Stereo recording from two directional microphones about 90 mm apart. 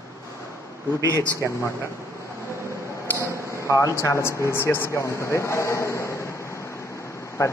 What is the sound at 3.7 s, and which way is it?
Speech, 35° left (ahead or behind).